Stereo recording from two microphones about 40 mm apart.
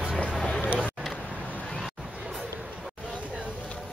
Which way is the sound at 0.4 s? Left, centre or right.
Left.